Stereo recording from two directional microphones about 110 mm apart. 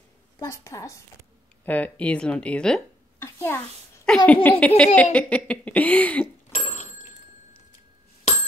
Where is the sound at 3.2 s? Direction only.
20° left (ahead or behind).